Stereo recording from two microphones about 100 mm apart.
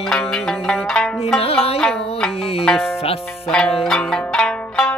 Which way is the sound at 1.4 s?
80° left.